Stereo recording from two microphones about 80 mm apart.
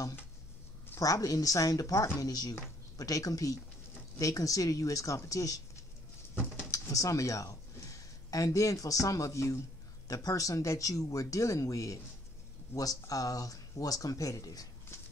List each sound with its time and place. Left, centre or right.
1.0 s speech: left
6.7 s speech: left